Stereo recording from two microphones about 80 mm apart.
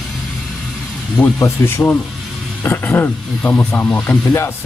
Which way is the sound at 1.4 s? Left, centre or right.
Left.